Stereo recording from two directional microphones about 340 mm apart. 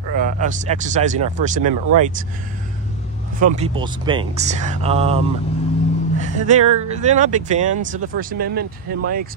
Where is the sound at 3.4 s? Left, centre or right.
Centre.